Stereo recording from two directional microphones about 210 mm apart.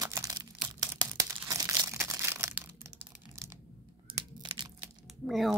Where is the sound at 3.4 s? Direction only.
15° right (ahead or behind).